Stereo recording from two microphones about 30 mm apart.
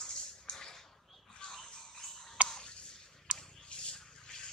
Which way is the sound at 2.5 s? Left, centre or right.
Left.